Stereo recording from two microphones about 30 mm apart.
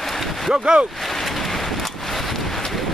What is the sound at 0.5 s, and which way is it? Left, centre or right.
Speech, right.